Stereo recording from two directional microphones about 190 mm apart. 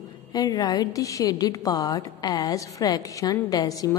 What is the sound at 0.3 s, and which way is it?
A woman's voice, 20° left (ahead or behind).